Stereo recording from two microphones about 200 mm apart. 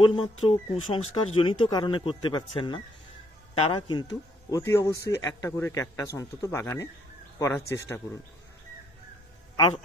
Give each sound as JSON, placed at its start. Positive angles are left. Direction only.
{"t": 0.1, "sound": "a man's voice", "side_deg": 25}